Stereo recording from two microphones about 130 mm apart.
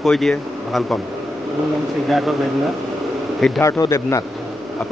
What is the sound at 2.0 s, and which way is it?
Speech, centre (ahead or behind).